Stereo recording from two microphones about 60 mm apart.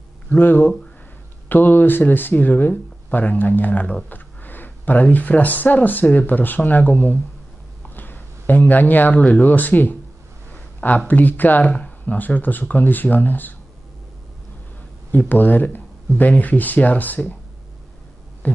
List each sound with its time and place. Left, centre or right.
0.4 s speech: left
10.5 s a sound: left
11.1 s speech: left
15.0 s speech: left
18.4 s hum: left